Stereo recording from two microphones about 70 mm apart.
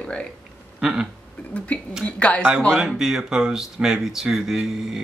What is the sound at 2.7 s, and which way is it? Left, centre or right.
Speech, centre.